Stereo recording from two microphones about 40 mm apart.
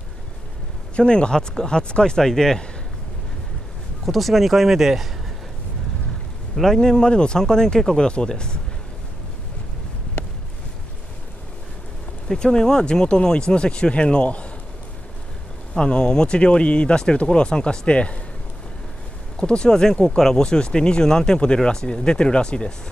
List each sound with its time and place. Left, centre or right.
0.9 s speech: left
4.0 s a man's voice: centre
6.5 s speech: centre
12.3 s speech: centre; by 14.5 s left
15.7 s speech: left
19.4 s speech: left